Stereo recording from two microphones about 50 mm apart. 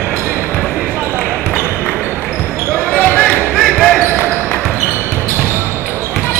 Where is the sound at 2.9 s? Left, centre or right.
Left.